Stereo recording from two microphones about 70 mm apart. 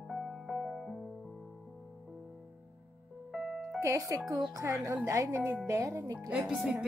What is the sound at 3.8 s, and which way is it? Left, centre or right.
Speech, right.